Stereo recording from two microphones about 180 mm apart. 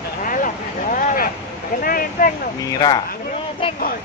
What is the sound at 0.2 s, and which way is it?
Vehicle, 50° left (ahead or behind).